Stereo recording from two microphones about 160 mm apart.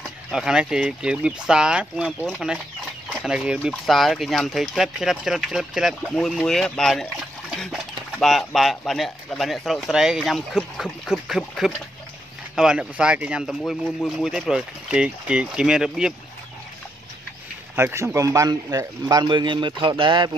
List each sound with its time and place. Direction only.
0.3 s speech: 5° right (ahead or behind)
17.7 s a man's voice: 15° right (ahead or behind)